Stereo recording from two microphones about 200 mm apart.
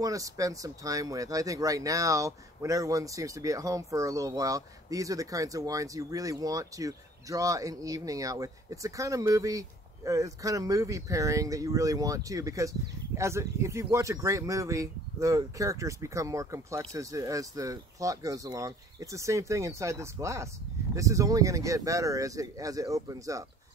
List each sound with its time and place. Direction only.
0.0 s speech: 15° right (ahead or behind)